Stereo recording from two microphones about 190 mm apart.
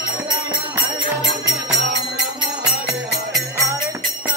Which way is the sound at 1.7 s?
60° right (ahead or behind).